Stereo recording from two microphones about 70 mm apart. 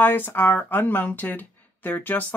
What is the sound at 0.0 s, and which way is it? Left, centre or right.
Speech, left.